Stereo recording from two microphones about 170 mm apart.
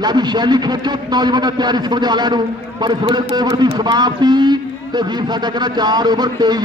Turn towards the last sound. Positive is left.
turn(degrees=-25)  # may be behind; listen again after turning